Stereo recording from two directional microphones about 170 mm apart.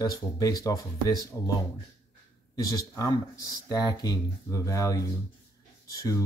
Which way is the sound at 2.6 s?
20° left (ahead or behind).